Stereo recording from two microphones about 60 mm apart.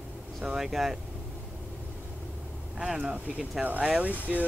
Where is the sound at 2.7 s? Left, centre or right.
Centre.